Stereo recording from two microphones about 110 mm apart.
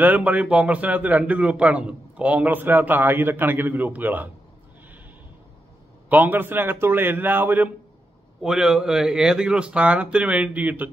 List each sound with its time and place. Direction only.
0.0 s a man's voice: 15° right (ahead or behind)
6.0 s a man's voice: 15° right (ahead or behind)
8.4 s a man's voice: 5° right (ahead or behind)